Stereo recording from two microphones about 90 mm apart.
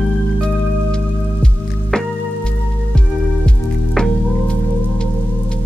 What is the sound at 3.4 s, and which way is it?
Music, 10° left (ahead or behind).